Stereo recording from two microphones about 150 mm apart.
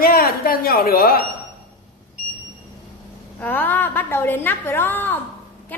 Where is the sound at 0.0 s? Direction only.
90° left.